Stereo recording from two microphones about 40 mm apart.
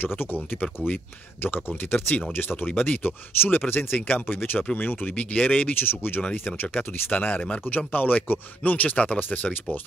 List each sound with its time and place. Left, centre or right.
0.0 s speech: left
0.8 s speech: left
1.4 s speech: left
4.7 s speech: left
5.8 s speech: left
6.4 s speech: left